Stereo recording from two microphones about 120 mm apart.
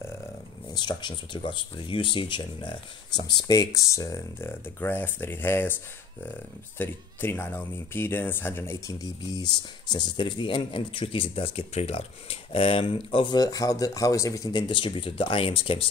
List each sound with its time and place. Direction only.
0.7 s speech: 35° left (ahead or behind); by 5.8 s 20° left (ahead or behind)
6.8 s speech: 15° left (ahead or behind)
9.3 s speech: 35° left (ahead or behind)
14.7 s speech: 45° left (ahead or behind)